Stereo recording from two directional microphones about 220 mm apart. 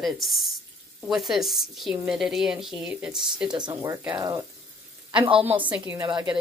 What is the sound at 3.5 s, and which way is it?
Speech, 20° right (ahead or behind).